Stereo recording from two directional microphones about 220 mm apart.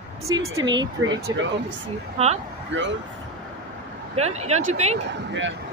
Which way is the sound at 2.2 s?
30° right (ahead or behind).